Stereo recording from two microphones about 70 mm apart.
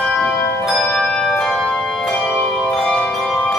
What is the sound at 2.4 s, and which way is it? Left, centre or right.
Music, centre.